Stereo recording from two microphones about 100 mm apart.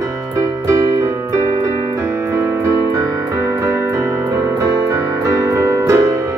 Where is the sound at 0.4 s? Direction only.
35° right (ahead or behind).